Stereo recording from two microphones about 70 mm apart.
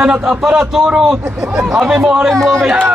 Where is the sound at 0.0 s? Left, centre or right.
Centre.